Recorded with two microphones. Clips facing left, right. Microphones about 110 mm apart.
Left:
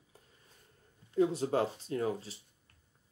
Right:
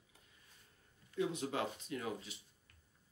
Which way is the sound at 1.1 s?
35° left (ahead or behind).